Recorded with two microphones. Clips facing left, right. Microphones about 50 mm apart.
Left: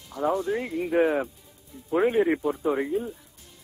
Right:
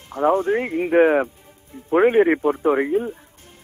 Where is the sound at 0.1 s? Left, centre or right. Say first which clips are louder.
Right 7 dB; right.